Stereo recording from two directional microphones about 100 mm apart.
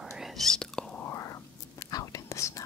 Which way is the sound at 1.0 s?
30° left (ahead or behind).